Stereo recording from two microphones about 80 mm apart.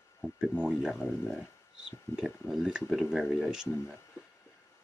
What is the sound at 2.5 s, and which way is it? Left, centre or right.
Speech, centre.